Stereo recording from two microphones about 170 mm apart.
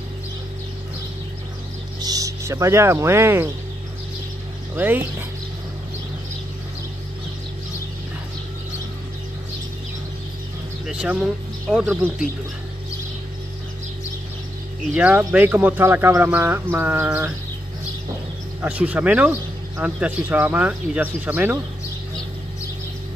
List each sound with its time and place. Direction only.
2.0 s speech: 20° right (ahead or behind)
4.7 s speech: 10° right (ahead or behind)
10.9 s speech: 5° right (ahead or behind)
15.0 s speech: 10° right (ahead or behind)
18.6 s speech: 10° right (ahead or behind)